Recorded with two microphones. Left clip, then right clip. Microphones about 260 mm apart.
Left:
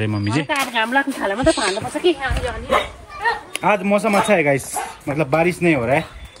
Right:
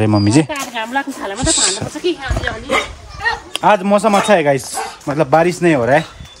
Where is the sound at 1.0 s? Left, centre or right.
Left.